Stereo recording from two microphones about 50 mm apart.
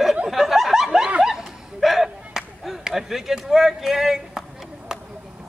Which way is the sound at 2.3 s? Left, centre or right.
Centre.